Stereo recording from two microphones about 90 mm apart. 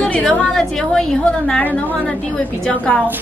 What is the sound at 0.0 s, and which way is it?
A woman's voice, 10° left (ahead or behind).